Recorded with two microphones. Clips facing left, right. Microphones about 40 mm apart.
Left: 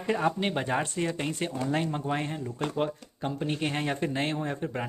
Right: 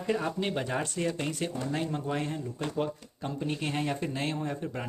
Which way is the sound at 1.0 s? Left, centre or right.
Centre.